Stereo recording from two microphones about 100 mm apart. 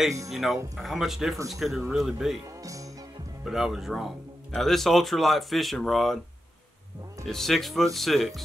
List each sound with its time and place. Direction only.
0.3 s speech: centre (ahead or behind)
2.6 s music: 35° right (ahead or behind)
3.4 s speech: 5° right (ahead or behind)
7.2 s speech: 5° left (ahead or behind)